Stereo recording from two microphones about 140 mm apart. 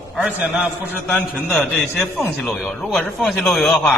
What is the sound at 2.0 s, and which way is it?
Speech, 20° left (ahead or behind).